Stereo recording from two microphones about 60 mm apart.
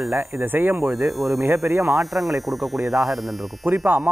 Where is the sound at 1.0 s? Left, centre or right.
Centre.